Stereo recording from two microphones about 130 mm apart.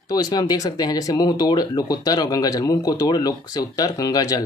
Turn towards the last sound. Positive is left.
turn(degrees=30)  # may be behind; listen again after turning